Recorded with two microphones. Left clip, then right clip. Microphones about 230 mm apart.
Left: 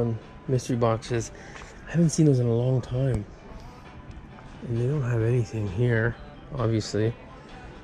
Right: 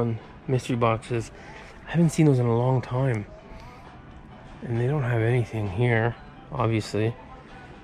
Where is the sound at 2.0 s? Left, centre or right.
Centre.